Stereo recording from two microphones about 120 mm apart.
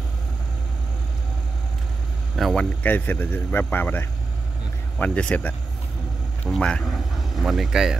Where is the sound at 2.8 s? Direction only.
15° left (ahead or behind); by 7.9 s 5° right (ahead or behind).